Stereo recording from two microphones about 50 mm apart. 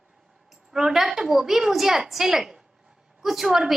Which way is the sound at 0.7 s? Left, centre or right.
Centre.